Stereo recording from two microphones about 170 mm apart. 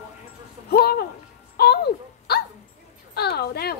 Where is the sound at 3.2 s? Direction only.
70° left (ahead or behind).